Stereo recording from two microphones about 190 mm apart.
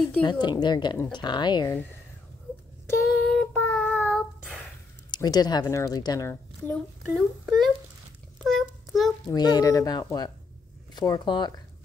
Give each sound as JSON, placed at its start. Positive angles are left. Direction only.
{"t": 0.2, "sound": "a woman's voice", "side_deg": 25}
{"t": 2.9, "sound": "child singing", "side_deg": 5}
{"t": 5.1, "sound": "a woman's voice", "side_deg": 20}
{"t": 7.4, "sound": "speech", "side_deg": 0}
{"t": 8.5, "sound": "child singing", "side_deg": 0}
{"t": 9.3, "sound": "a woman's voice", "side_deg": 20}